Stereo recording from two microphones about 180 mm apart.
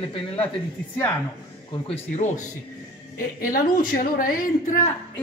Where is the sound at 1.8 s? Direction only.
40° left (ahead or behind).